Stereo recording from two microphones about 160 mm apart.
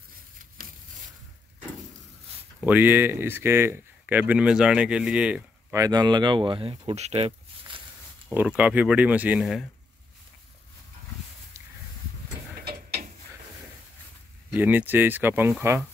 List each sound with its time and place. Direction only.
2.6 s speech: 10° right (ahead or behind)
5.8 s speech: 25° right (ahead or behind)
8.3 s speech: 5° right (ahead or behind)
14.5 s speech: 10° right (ahead or behind)